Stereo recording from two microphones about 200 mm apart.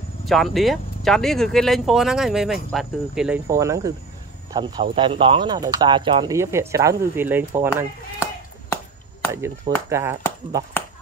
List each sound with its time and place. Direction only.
0.2 s speech: centre (ahead or behind)
3.4 s speech: 15° right (ahead or behind)
6.3 s speech: 15° right (ahead or behind)
9.3 s speech: 15° right (ahead or behind)